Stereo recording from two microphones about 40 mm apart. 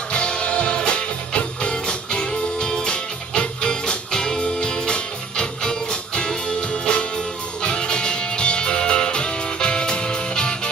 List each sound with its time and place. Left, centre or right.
0.1 s music: left